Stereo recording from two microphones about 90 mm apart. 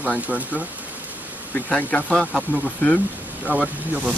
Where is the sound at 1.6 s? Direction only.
10° left (ahead or behind).